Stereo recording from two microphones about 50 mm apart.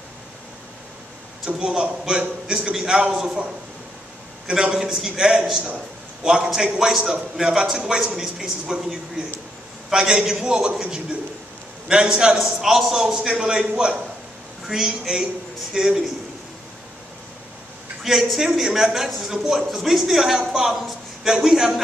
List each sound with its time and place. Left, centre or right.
1.4 s a man's voice: centre
4.5 s a man's voice: centre
12.4 s a man's voice: centre
18.0 s a man's voice: centre